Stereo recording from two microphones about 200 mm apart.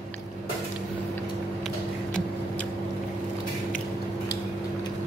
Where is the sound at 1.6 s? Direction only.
5° left (ahead or behind).